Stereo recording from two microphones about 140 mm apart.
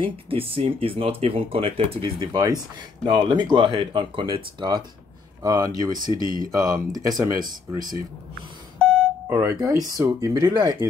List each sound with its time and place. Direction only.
0.0 s speech: 40° right (ahead or behind); by 5.9 s 25° right (ahead or behind)
6.1 s speech: 80° right
6.4 s speech: 25° right (ahead or behind)
8.7 s beep: 5° left (ahead or behind)
9.3 s speech: 20° right (ahead or behind)